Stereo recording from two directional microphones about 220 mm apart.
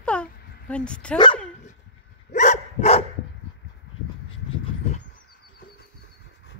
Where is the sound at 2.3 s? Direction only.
35° left (ahead or behind).